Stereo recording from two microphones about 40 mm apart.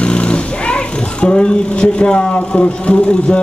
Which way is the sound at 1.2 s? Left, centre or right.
Left.